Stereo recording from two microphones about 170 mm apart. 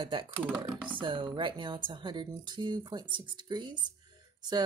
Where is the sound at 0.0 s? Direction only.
30° right (ahead or behind).